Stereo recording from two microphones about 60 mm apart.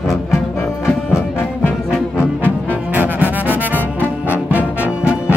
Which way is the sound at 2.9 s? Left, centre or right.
Right.